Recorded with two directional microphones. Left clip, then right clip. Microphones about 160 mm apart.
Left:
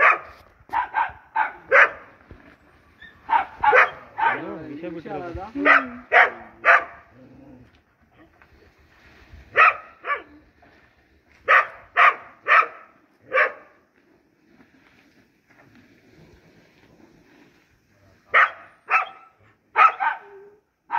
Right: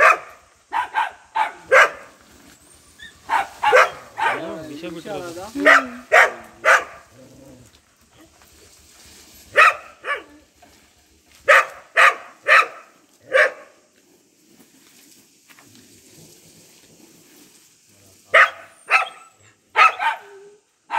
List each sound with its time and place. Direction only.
0.7 s dog: 50° left (ahead or behind)
3.3 s dog: 45° left (ahead or behind)
4.6 s bow-wow: 25° left (ahead or behind)
5.6 s dog: 45° left (ahead or behind)
9.5 s dog: 45° left (ahead or behind)
11.4 s dog: 45° left (ahead or behind)
18.3 s dog: 50° left (ahead or behind)